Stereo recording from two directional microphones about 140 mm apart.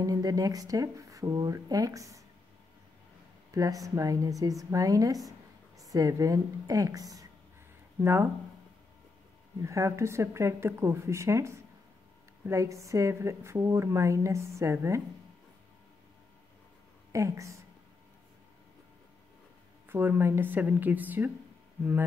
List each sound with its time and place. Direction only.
0.0 s speech: 25° right (ahead or behind)
3.5 s speech: 25° right (ahead or behind)
9.6 s speech: 20° right (ahead or behind)
17.1 s speech: 20° right (ahead or behind)
19.9 s a woman's voice: 15° right (ahead or behind)